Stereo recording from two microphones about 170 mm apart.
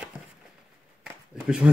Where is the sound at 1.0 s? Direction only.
5° right (ahead or behind).